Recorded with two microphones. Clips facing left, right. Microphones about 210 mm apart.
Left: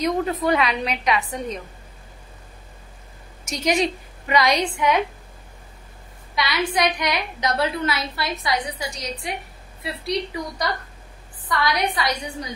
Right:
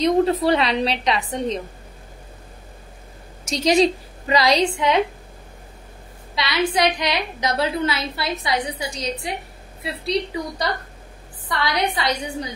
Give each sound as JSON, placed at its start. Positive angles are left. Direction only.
{"t": 0.0, "sound": "a woman's voice", "side_deg": -35}
{"t": 3.4, "sound": "a woman's voice", "side_deg": -30}
{"t": 6.3, "sound": "a woman's voice", "side_deg": -25}